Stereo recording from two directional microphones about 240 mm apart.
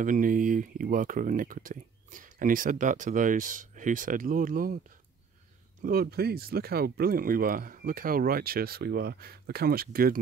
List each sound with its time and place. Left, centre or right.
0.0 s speech: right
5.8 s speech: right